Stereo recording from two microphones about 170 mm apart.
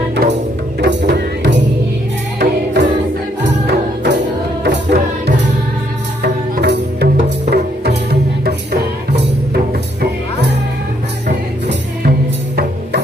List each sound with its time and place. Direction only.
0.7 s music: 85° right
3.6 s music: 85° right